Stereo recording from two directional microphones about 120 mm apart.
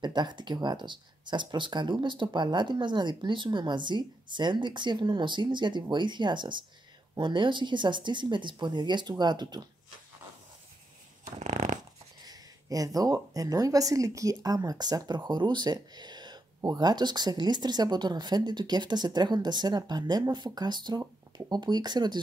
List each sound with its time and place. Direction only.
0.0 s speech: 35° right (ahead or behind)
11.3 s dog: 75° right (ahead or behind)
12.3 s speech: 30° right (ahead or behind)